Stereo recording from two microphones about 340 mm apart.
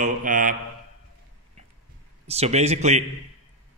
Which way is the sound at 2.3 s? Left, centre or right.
Centre.